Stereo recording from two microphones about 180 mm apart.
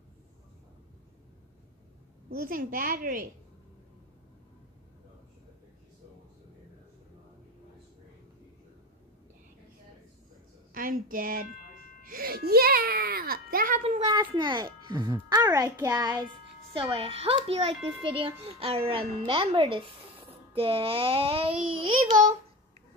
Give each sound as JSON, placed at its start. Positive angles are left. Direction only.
{"t": 2.2, "sound": "a woman's voice", "side_deg": -55}
{"t": 10.7, "sound": "a woman's voice", "side_deg": -50}
{"t": 13.8, "sound": "speech", "side_deg": -25}
{"t": 16.7, "sound": "a child's voice", "side_deg": -30}